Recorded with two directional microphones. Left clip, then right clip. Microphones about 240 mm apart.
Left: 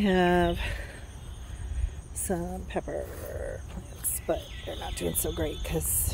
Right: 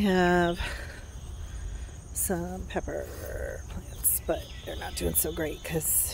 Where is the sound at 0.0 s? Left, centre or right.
Centre.